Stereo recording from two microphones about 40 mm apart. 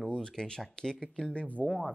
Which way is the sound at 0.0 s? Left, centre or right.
Centre.